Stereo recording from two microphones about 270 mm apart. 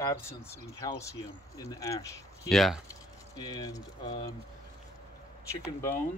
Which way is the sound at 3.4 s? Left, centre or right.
Centre.